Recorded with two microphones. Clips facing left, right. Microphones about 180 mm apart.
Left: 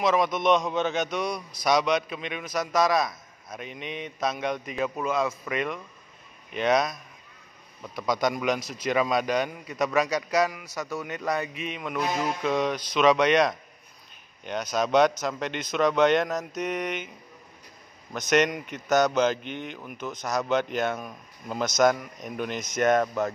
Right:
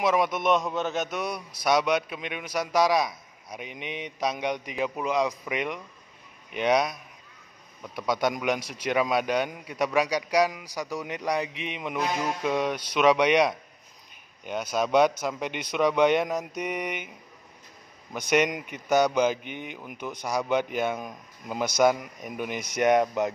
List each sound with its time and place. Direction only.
0.0 s a man's voice: 10° right (ahead or behind)
18.3 s a man's voice: 10° right (ahead or behind)